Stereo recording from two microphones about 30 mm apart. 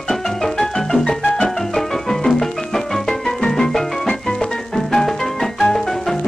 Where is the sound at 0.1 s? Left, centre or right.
Centre.